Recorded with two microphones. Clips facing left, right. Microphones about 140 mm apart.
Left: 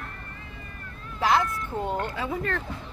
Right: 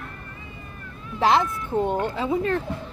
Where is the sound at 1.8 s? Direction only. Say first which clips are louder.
Right 5 dB; 20° right (ahead or behind).